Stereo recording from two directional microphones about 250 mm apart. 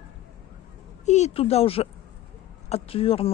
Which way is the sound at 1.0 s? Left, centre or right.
Left.